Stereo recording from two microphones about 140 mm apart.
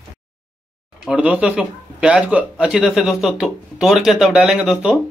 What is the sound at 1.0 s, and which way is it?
Speech, 10° right (ahead or behind).